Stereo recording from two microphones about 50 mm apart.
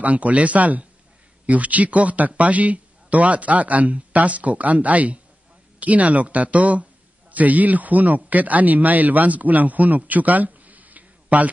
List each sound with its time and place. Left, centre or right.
0.0 s a man's voice: right